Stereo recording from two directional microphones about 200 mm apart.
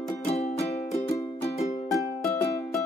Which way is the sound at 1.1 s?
15° left (ahead or behind).